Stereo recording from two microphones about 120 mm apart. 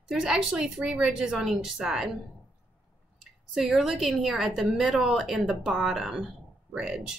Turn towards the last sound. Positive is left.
turn(degrees=-5)  # may be behind; listen again after turning